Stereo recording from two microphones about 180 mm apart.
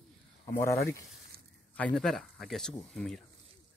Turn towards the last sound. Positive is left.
turn(degrees=0)  # may be behind; listen again after turning